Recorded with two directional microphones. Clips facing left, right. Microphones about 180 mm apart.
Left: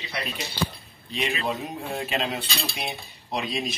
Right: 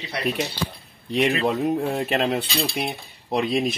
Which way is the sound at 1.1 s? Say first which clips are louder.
Right 7 dB; 60° right (ahead or behind).